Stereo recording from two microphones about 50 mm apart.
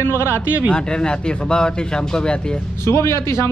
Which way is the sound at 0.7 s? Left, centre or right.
Centre.